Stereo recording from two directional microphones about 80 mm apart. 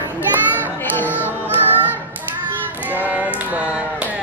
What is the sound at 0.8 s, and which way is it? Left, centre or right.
Music, left.